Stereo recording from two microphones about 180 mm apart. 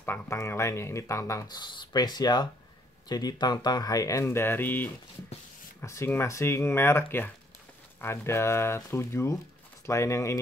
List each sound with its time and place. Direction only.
0.0 s speech: 15° left (ahead or behind)